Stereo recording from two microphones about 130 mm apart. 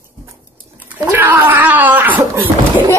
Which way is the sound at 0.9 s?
15° right (ahead or behind).